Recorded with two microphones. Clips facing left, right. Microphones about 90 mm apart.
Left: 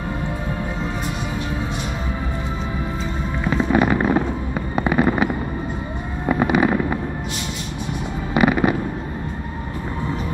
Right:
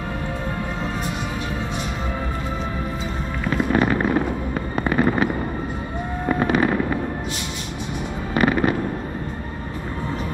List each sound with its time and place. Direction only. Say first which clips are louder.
3.7 s fireworks: left 2 dB; 10° left (ahead or behind)
8.4 s fireworks: left 2 dB; 10° left (ahead or behind)